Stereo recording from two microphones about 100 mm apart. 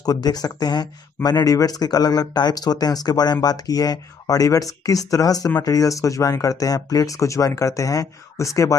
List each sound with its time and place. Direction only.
0.0 s speech: 40° left (ahead or behind)